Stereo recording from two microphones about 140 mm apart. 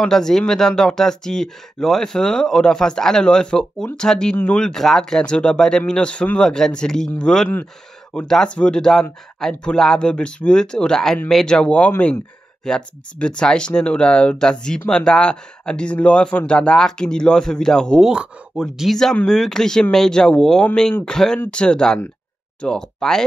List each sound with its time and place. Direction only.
0.0 s speech: 5° left (ahead or behind)